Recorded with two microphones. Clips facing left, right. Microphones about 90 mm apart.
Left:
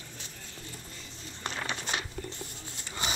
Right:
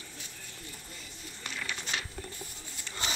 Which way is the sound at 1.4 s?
40° left (ahead or behind).